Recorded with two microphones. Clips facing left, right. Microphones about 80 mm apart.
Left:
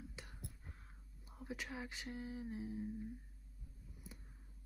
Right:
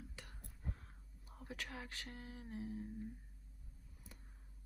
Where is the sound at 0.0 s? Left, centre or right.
Centre.